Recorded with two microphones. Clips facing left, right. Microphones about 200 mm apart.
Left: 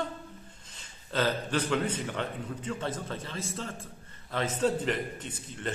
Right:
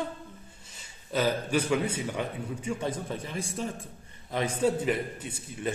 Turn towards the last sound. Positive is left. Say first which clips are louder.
# right 2 dB
turn(degrees=-10)  # may be behind; listen again after turning